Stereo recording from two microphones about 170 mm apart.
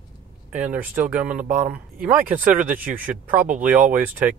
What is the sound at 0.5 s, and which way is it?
Speech, 10° right (ahead or behind).